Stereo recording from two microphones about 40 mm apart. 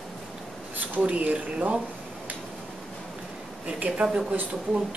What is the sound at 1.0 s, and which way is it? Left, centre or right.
Speech, right.